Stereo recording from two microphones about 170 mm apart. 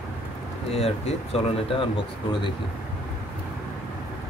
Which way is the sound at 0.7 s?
35° left (ahead or behind).